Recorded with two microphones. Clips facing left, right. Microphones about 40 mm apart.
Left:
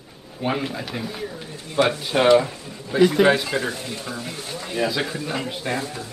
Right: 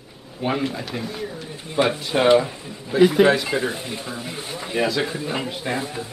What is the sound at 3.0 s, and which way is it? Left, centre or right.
Speech, centre.